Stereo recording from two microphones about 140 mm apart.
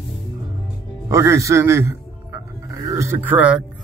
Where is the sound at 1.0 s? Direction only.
20° right (ahead or behind).